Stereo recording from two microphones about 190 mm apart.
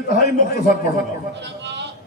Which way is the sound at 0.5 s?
50° left (ahead or behind).